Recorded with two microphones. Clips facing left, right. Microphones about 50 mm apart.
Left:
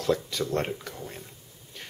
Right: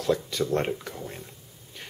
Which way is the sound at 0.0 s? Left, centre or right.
Centre.